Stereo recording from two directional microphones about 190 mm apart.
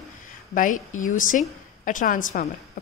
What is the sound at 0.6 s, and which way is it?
Speech, 45° left (ahead or behind).